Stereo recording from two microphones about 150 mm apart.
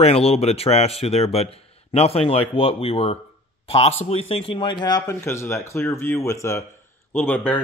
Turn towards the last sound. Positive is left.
turn(degrees=10)  # may be behind; listen again after turning